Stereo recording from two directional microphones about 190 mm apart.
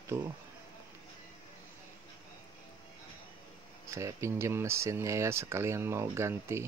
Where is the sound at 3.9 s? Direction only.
15° right (ahead or behind).